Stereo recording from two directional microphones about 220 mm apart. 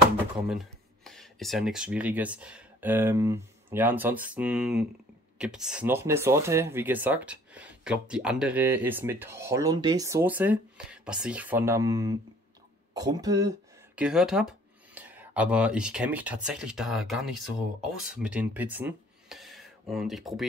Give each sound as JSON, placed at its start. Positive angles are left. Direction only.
{"t": 0.5, "sound": "speech", "side_deg": 0}
{"t": 13.9, "sound": "speech", "side_deg": -5}